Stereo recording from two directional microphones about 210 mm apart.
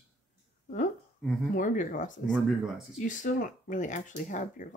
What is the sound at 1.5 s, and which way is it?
Speech, 35° left (ahead or behind).